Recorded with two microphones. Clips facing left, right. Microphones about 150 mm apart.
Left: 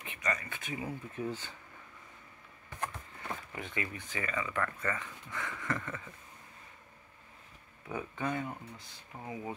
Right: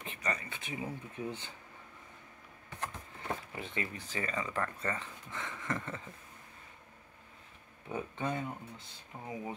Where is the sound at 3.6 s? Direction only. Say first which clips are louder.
Even; 30° right (ahead or behind).